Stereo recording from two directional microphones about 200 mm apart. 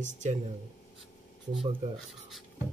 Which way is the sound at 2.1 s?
Centre (ahead or behind).